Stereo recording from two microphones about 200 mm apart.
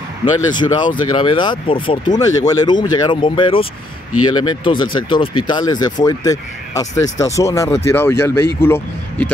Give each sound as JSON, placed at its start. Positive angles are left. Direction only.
{"t": 0.5, "sound": "speech", "side_deg": 20}